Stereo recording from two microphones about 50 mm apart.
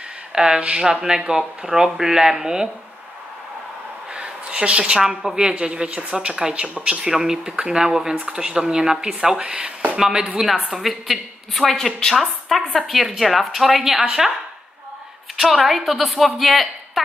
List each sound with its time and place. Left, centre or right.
0.3 s speech: centre
4.1 s a woman's voice: centre
15.3 s a woman's voice: centre